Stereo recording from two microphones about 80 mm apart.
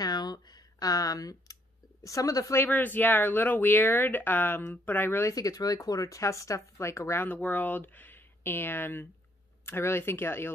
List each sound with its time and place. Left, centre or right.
0.0 s a sound: left
2.0 s speech: left
2.5 s speech: left
5.3 s speech: left
7.2 s speech: left